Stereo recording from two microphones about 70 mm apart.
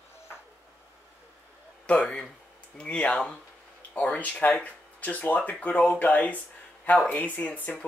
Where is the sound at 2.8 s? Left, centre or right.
Centre.